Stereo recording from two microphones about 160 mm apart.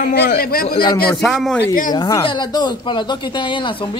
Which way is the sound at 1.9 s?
25° left (ahead or behind).